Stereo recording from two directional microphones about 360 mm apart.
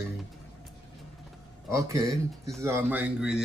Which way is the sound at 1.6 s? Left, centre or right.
Centre.